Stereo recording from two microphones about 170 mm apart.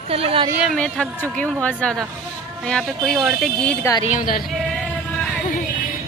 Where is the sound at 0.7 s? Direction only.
5° left (ahead or behind).